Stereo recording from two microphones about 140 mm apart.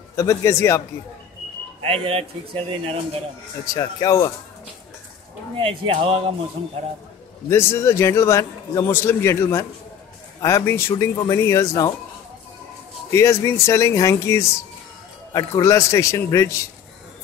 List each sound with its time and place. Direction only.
0.1 s a man's voice: 20° left (ahead or behind)
1.8 s a man's voice: 45° right (ahead or behind)
3.6 s a man's voice: 25° left (ahead or behind)
5.6 s a man's voice: 40° right (ahead or behind)
7.4 s a man's voice: 20° left (ahead or behind)
13.1 s a man's voice: 20° left (ahead or behind)